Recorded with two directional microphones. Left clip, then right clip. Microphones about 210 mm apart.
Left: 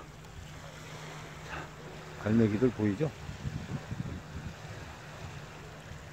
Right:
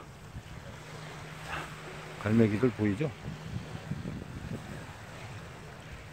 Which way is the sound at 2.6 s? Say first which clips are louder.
Even; 20° right (ahead or behind).